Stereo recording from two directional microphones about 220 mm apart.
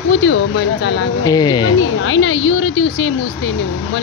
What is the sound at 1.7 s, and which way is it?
Speech, 60° left (ahead or behind).